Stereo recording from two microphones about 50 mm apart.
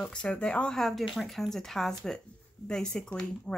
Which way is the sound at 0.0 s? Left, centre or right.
Centre.